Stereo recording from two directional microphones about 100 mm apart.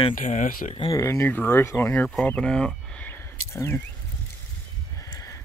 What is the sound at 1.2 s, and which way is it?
Speech, 20° left (ahead or behind).